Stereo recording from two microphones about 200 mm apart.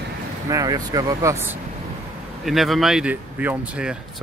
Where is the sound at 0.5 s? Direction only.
15° right (ahead or behind).